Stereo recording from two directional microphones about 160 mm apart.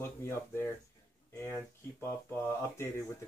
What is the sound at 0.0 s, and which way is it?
Speech, 15° left (ahead or behind).